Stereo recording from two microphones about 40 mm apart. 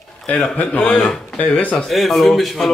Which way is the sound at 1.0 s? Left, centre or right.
Centre.